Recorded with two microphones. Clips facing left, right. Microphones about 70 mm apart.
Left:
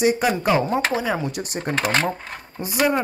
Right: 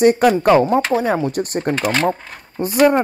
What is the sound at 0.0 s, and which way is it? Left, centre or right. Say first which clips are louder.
Speech: right 7 dB; right.